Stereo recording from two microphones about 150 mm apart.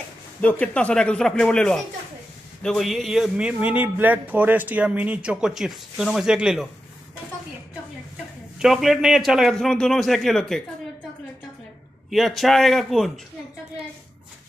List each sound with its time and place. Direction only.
0.4 s a man's voice: 10° left (ahead or behind)
8.5 s a man's voice: 5° right (ahead or behind)
12.1 s a man's voice: centre (ahead or behind)